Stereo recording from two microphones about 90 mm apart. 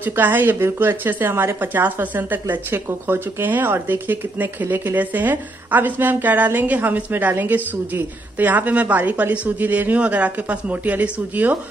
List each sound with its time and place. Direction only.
0.0 s speech: 20° right (ahead or behind)